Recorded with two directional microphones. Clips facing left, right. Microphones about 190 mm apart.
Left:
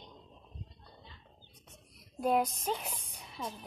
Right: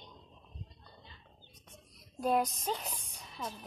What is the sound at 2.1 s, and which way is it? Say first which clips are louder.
Speech: left 1 dB; 5° left (ahead or behind).